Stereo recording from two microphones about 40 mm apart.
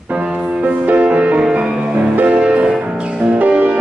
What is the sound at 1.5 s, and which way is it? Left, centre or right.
Music, right.